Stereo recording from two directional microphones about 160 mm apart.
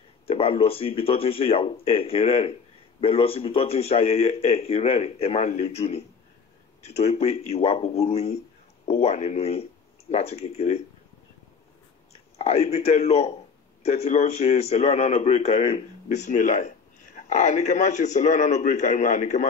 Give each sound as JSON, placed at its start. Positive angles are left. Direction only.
{"t": 0.3, "sound": "a man's voice", "side_deg": 35}
{"t": 12.4, "sound": "a man's voice", "side_deg": 40}